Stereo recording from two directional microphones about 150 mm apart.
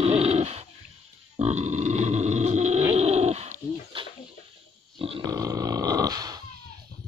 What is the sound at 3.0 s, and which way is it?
Bird, 45° right (ahead or behind).